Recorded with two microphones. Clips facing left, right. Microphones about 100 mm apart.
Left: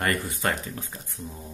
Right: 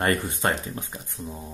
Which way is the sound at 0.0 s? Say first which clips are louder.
Right 3 dB; 25° right (ahead or behind).